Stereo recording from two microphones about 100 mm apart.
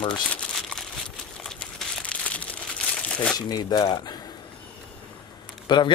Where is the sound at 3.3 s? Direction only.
40° left (ahead or behind).